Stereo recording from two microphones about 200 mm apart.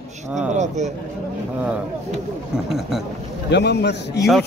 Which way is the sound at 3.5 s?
55° left (ahead or behind).